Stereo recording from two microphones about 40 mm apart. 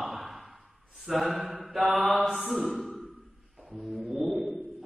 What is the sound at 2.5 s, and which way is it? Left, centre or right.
Speech, centre.